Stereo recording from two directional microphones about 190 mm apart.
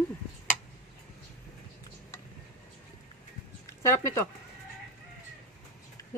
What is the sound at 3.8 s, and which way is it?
Speech, 15° left (ahead or behind).